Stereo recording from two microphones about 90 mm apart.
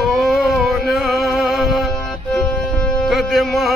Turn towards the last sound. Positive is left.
turn(degrees=0)  # may be behind; listen again after turning